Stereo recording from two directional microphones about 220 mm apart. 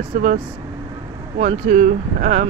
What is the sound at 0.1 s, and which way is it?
Speech, 35° right (ahead or behind).